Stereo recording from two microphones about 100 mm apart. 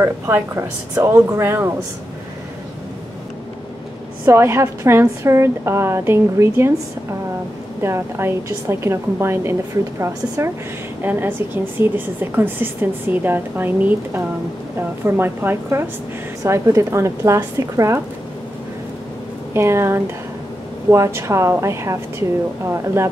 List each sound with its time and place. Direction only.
0.0 s a woman's voice: 30° right (ahead or behind)
4.3 s a woman's voice: 25° right (ahead or behind)
7.8 s a woman's voice: 25° right (ahead or behind)
19.5 s a woman's voice: 25° right (ahead or behind)